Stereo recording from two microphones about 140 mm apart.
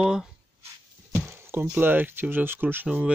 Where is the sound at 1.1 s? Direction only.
15° right (ahead or behind).